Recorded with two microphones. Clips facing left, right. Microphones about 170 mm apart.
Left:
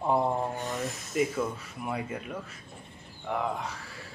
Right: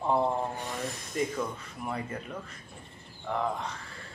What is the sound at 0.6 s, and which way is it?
Speech, centre (ahead or behind).